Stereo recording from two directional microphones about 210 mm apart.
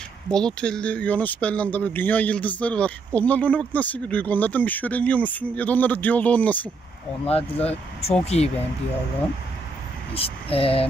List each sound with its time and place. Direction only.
0.3 s speech: 5° left (ahead or behind)
7.2 s speech: 30° left (ahead or behind)
10.1 s speech: 30° left (ahead or behind)